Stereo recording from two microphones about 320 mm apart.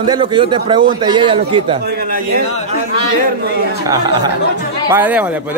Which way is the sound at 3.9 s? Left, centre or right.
Centre.